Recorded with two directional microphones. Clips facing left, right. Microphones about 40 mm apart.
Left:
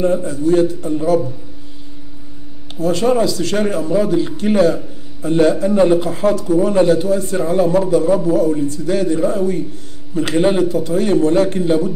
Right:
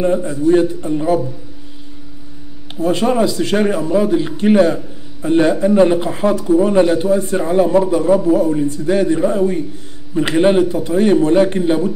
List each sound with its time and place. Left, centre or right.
0.0 s speech: centre
2.7 s speech: right